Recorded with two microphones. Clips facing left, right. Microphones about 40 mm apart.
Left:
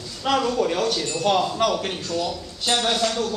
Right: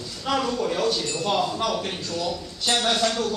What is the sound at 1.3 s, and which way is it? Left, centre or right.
A man's voice, centre.